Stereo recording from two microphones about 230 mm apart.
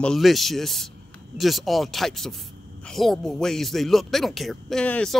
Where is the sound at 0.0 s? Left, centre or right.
Centre.